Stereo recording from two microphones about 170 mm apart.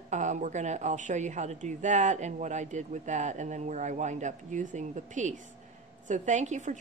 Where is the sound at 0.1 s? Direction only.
45° right (ahead or behind).